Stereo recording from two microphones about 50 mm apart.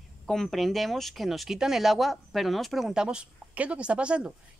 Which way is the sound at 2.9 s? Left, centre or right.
Centre.